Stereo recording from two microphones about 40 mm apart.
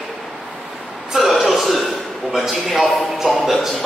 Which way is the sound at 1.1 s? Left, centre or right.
Centre.